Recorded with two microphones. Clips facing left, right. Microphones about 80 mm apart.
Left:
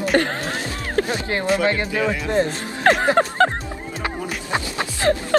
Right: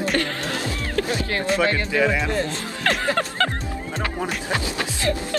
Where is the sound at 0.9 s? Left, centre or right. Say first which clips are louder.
Left 3 dB; left.